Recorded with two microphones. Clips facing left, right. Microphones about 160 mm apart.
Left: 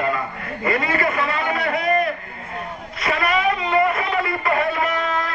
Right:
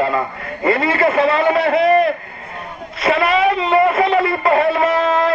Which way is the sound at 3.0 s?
25° right (ahead or behind).